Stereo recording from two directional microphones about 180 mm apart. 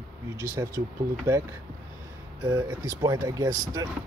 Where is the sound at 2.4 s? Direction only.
15° right (ahead or behind).